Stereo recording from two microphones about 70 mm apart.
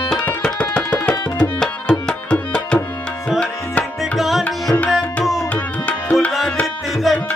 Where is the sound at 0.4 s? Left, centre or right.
Centre.